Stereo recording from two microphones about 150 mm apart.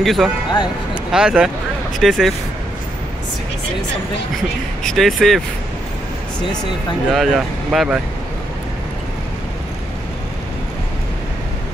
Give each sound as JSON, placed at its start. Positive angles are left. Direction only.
{"t": 0.0, "sound": "speech", "side_deg": 0}
{"t": 4.8, "sound": "speech", "side_deg": 0}
{"t": 6.5, "sound": "speech", "side_deg": 25}
{"t": 7.1, "sound": "speech", "side_deg": 0}